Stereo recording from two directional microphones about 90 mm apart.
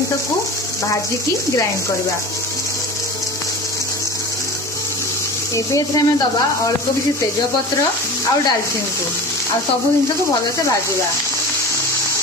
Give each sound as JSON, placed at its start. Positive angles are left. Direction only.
{"t": 5.8, "sound": "speech", "side_deg": 40}